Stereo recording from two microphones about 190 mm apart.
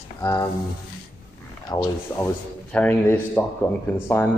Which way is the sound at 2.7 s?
10° left (ahead or behind).